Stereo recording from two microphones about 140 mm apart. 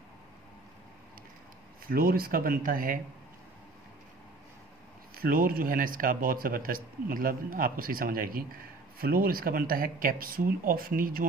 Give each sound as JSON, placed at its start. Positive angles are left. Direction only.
{"t": 1.9, "sound": "speech", "side_deg": -90}
{"t": 5.1, "sound": "speech", "side_deg": -90}